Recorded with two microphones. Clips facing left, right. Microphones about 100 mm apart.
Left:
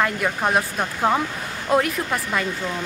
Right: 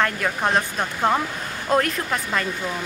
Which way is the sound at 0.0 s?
5° left (ahead or behind).